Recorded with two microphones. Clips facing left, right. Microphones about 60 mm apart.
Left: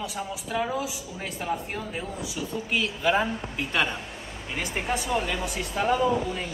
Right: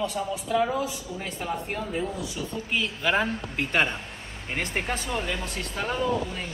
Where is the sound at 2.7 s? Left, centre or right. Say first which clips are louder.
Left 1 dB; centre.